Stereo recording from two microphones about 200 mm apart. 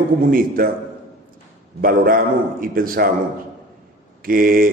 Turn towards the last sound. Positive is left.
turn(degrees=-45)  # may be behind; listen again after turning